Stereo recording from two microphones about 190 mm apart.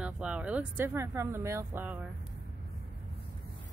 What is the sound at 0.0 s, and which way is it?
Speech, 5° right (ahead or behind).